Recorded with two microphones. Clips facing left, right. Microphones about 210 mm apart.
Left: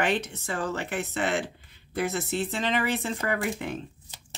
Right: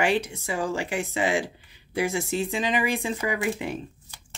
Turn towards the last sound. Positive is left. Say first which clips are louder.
# right 2 dB
turn(degrees=-10)  # may be behind; listen again after turning